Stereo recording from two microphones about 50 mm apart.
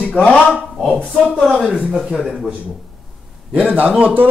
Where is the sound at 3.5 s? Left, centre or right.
Right.